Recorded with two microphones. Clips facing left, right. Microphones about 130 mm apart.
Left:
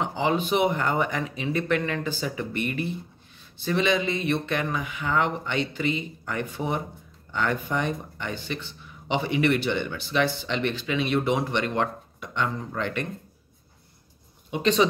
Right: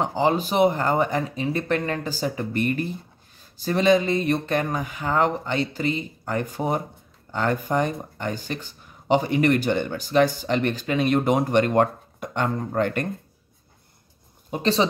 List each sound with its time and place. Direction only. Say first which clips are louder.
0.0 s speech: right 3 dB; 40° right (ahead or behind)
14.5 s speech: even; 35° right (ahead or behind)